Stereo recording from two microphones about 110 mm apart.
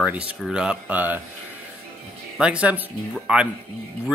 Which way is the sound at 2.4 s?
10° right (ahead or behind).